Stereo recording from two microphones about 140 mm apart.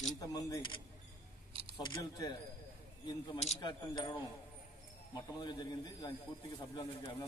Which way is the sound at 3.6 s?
30° left (ahead or behind).